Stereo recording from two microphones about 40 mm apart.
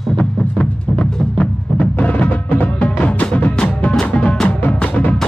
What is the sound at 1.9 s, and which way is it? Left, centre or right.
Music, left.